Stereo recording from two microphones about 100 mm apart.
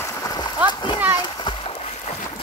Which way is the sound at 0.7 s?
50° left (ahead or behind).